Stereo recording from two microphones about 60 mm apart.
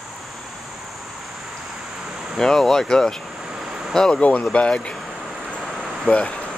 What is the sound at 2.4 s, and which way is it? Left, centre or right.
Speech, centre.